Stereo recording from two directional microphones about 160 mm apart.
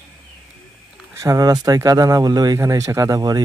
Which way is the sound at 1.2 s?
25° right (ahead or behind).